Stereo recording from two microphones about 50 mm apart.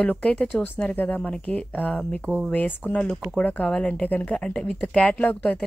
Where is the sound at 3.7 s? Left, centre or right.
Left.